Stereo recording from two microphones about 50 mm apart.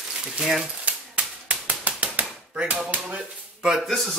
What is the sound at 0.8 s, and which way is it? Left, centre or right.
Typewriter, right.